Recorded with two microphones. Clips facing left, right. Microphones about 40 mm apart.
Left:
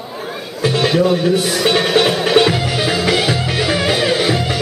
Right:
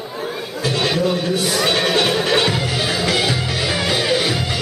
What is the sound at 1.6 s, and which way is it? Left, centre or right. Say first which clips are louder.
Music: left 4 dB; centre.